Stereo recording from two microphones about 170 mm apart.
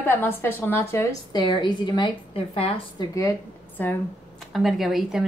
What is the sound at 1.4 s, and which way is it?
A woman's voice, 25° left (ahead or behind).